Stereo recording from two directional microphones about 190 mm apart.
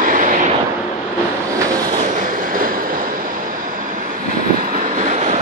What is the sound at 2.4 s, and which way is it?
Train, 45° right (ahead or behind).